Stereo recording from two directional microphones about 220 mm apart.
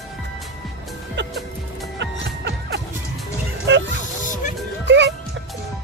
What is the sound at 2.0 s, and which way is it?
Music, 50° right (ahead or behind).